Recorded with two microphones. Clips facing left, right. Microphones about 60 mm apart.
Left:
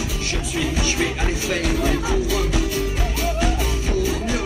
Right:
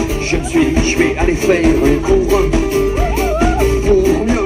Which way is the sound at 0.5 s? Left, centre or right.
Right.